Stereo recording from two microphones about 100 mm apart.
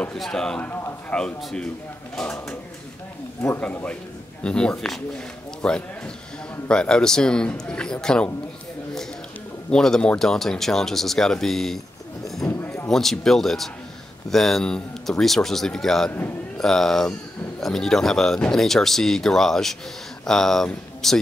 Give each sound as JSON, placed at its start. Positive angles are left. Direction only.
{"t": 0.0, "sound": "speech", "side_deg": 5}
{"t": 0.6, "sound": "speech", "side_deg": 20}
{"t": 1.1, "sound": "a man's voice", "side_deg": 5}
{"t": 3.6, "sound": "a man's voice", "side_deg": 10}
{"t": 9.7, "sound": "speech", "side_deg": 5}
{"t": 12.4, "sound": "a sound", "side_deg": 25}
{"t": 12.8, "sound": "speech", "side_deg": 5}